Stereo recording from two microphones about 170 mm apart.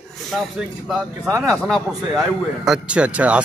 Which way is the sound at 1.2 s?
20° right (ahead or behind).